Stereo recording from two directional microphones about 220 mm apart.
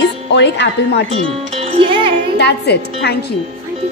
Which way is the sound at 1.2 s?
25° right (ahead or behind).